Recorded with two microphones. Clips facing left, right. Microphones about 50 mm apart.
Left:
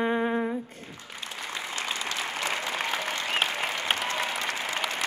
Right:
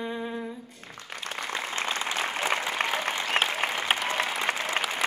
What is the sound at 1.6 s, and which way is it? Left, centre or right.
Applause, right.